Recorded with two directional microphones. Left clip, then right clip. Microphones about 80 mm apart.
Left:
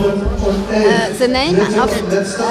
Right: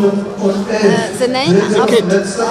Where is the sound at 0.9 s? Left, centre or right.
Right.